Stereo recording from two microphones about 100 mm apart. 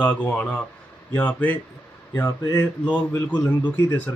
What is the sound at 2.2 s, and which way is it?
Speech, 25° left (ahead or behind).